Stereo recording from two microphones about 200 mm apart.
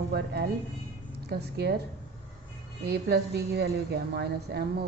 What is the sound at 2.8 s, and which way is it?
A woman's voice, 55° right (ahead or behind).